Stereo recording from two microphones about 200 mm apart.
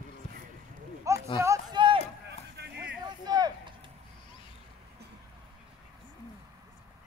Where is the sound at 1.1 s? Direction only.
15° right (ahead or behind).